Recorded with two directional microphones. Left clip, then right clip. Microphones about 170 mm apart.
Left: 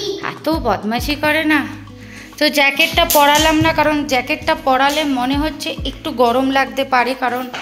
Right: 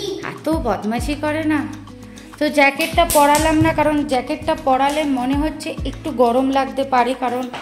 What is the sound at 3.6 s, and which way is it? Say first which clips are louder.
Music: left 2 dB; 15° right (ahead or behind).